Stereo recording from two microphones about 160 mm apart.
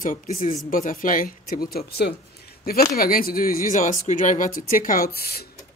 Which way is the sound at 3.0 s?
65° left (ahead or behind).